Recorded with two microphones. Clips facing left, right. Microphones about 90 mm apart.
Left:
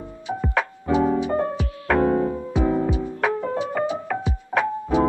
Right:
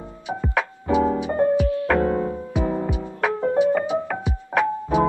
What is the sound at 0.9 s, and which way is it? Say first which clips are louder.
Music: even; 15° right (ahead or behind).